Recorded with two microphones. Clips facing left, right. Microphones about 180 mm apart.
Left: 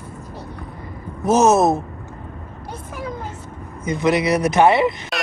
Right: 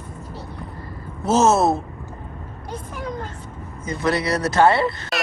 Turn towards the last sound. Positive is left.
turn(degrees=15)  # may be behind; listen again after turning